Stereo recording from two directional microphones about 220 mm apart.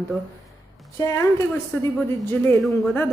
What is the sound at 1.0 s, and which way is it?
A woman's voice, 15° left (ahead or behind).